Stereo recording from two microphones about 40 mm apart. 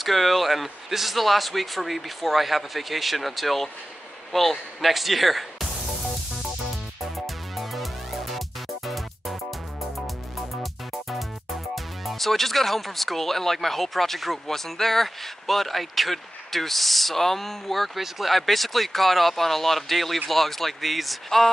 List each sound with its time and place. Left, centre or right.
0.0 s speech: centre
7.5 s music: centre
10.5 s music: centre
11.7 s speech: centre